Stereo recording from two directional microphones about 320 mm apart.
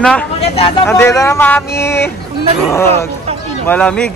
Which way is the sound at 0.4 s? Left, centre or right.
Centre.